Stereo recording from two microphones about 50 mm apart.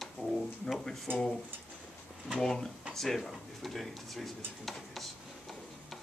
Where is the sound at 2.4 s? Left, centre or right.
Centre.